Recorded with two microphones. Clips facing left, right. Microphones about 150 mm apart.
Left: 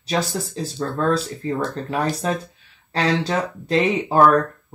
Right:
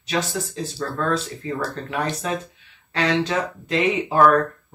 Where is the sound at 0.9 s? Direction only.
35° left (ahead or behind).